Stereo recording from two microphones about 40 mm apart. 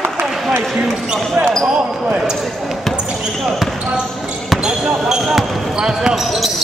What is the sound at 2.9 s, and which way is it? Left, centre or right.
Basketball bounce, right.